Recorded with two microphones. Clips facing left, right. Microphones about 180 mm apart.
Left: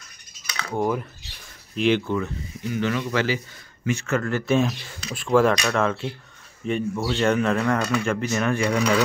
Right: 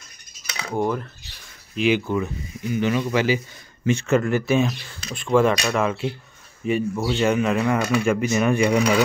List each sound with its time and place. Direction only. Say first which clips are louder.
0.5 s cutlery: right 1 dB; 20° right (ahead or behind)
0.7 s speech: right 1 dB; 5° left (ahead or behind)
1.8 s speech: right 1 dB; 10° right (ahead or behind)
4.6 s speech: right 1 dB; centre (ahead or behind); by 9.0 s 15° right (ahead or behind)